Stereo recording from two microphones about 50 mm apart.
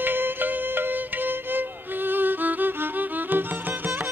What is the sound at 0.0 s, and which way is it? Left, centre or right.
Music, right.